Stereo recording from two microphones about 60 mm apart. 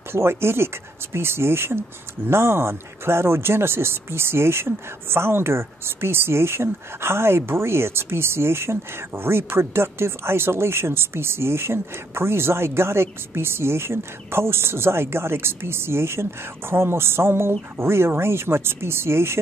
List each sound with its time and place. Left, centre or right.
0.1 s speech: right